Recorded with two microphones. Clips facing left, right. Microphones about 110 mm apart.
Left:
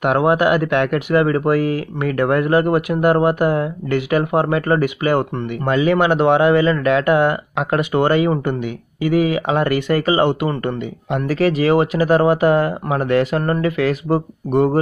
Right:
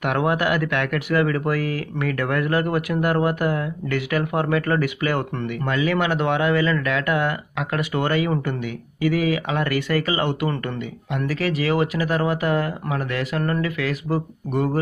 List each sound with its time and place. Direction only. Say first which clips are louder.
0.0 s speech: left 6 dB; 25° left (ahead or behind)
11.1 s speech: left 7 dB; 35° left (ahead or behind)